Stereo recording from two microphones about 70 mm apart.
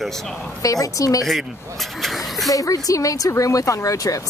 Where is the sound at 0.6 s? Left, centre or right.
Left.